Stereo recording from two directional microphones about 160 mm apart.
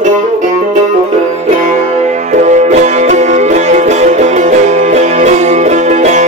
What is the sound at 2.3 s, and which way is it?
Music, 50° right (ahead or behind).